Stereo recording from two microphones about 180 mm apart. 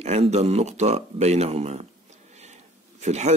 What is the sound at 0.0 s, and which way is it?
Speech, 35° right (ahead or behind).